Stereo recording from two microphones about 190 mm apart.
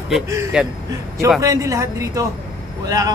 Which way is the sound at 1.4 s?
15° right (ahead or behind).